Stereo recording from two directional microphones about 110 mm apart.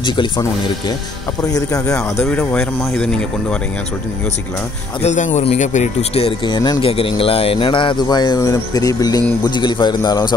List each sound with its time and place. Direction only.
0.0 s speech: 45° left (ahead or behind)
2.5 s speech: 5° left (ahead or behind)
5.0 s speech: 85° left
6.4 s speech: 40° left (ahead or behind)
6.8 s speech: 55° left (ahead or behind)